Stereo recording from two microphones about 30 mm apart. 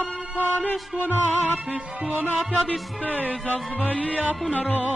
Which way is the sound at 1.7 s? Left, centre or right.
Right.